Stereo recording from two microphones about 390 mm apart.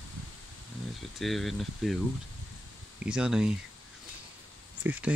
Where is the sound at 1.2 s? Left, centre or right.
Centre.